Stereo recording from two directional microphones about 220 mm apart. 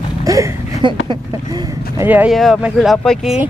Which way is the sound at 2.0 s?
5° right (ahead or behind).